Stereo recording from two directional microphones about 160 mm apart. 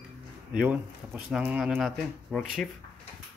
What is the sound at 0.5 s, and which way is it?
Speech, 5° right (ahead or behind).